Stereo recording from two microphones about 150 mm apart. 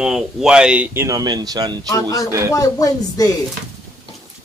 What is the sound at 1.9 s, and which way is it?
Speech, 20° left (ahead or behind).